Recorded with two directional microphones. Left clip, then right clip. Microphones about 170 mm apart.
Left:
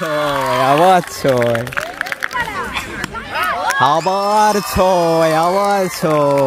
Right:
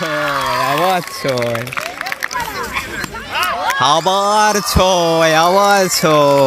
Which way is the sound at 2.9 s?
60° left (ahead or behind).